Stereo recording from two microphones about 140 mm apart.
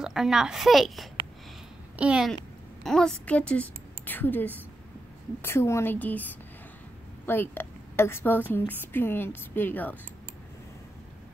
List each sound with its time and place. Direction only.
0.0 s a woman's voice: 5° right (ahead or behind)
2.8 s a woman's voice: 5° left (ahead or behind)
7.2 s a woman's voice: 15° left (ahead or behind)